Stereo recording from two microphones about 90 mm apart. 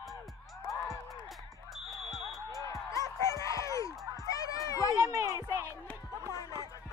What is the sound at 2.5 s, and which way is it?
Music, 35° left (ahead or behind).